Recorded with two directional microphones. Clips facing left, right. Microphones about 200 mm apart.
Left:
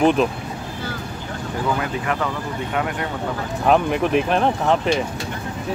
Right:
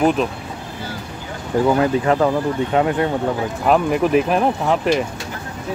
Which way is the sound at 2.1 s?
35° right (ahead or behind).